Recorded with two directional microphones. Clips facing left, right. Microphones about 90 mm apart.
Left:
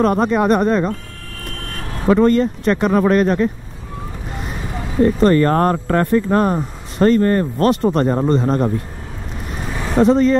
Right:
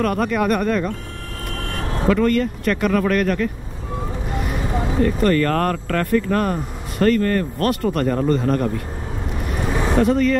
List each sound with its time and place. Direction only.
0.0 s speech: 25° left (ahead or behind)
1.7 s vehicle: 30° right (ahead or behind)
2.0 s speech: 25° left (ahead or behind)
5.0 s speech: 25° left (ahead or behind)
9.6 s vehicle: 20° right (ahead or behind)
9.9 s speech: 25° left (ahead or behind)